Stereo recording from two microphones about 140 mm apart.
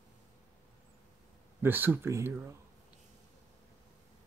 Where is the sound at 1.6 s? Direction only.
15° right (ahead or behind).